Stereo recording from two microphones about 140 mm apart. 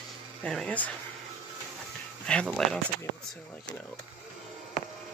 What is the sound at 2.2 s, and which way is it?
Speech, 5° left (ahead or behind).